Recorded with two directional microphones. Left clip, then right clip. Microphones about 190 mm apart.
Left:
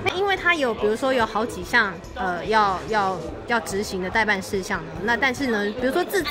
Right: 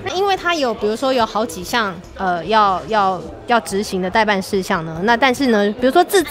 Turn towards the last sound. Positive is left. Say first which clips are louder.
# right 9 dB
turn(degrees=-45)  # may be behind; listen again after turning